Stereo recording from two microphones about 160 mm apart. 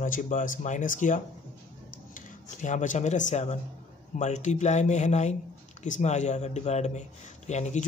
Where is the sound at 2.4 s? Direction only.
50° left (ahead or behind).